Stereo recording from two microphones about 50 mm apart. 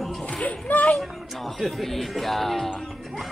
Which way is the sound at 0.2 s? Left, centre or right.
Left.